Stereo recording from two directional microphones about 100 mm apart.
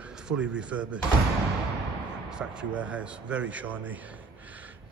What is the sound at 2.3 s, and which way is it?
Speech, 10° right (ahead or behind).